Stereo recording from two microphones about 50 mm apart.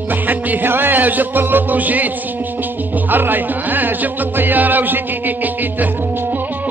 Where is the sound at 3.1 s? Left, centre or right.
Right.